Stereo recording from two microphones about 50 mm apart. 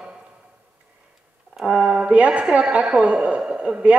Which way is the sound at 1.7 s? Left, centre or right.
Right.